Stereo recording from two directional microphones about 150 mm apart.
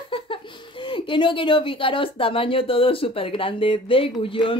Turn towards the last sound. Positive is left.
turn(degrees=35)  # may be behind; listen again after turning